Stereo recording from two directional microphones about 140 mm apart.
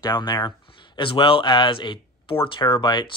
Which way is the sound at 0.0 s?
30° left (ahead or behind).